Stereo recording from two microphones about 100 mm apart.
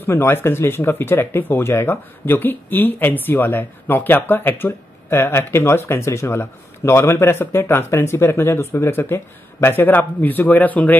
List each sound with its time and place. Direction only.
0.0 s speech: 25° left (ahead or behind)